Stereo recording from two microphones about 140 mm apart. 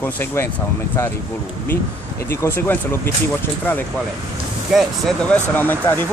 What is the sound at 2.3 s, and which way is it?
Speech, 15° left (ahead or behind).